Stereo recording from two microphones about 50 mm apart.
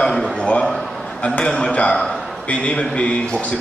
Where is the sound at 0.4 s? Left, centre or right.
Centre.